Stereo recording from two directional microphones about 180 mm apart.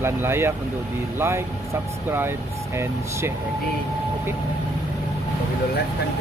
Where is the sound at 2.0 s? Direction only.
10° right (ahead or behind).